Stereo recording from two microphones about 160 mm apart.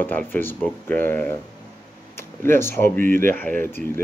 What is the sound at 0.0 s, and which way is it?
Speech, 10° left (ahead or behind).